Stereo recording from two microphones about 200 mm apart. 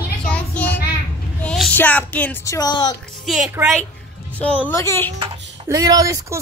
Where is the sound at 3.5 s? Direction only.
5° right (ahead or behind).